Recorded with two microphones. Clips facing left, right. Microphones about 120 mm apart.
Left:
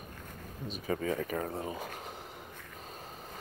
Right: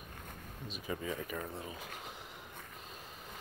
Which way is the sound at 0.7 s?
50° left (ahead or behind).